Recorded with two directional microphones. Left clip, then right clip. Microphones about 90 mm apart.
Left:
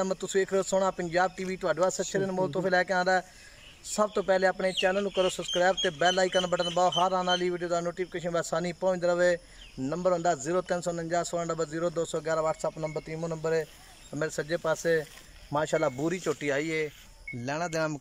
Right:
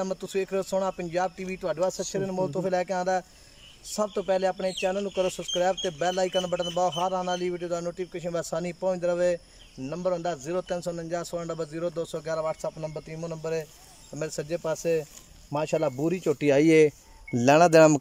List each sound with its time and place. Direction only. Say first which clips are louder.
0.0 s speech: left 1 dB; centre (ahead or behind)
14.1 s speech: left 1 dB; 10° right (ahead or behind)
16.3 s speech: right 7 dB; 70° right (ahead or behind)